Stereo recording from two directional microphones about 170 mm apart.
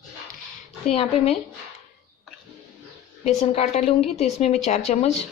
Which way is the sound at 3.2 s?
40° left (ahead or behind).